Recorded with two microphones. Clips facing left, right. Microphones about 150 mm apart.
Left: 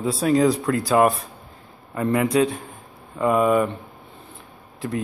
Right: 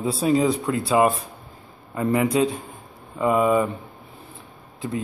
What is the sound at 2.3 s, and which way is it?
Speech, 30° right (ahead or behind).